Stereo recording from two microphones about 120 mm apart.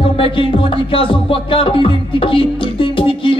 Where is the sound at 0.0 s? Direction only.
50° left (ahead or behind).